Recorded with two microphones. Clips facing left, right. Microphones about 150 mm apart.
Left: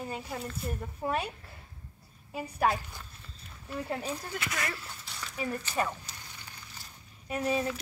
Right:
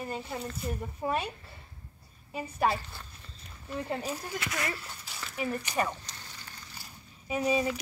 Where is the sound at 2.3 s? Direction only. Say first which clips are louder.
Even; centre (ahead or behind).